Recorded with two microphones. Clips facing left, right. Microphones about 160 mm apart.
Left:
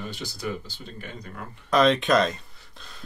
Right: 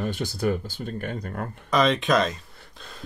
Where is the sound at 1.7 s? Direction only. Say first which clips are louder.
Left 1 dB; centre (ahead or behind).